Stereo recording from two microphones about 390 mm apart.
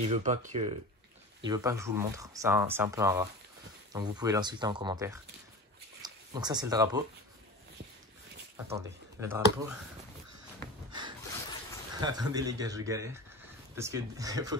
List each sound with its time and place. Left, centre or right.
0.0 s speech: centre
8.6 s speech: centre
10.9 s snort: centre
12.0 s speech: centre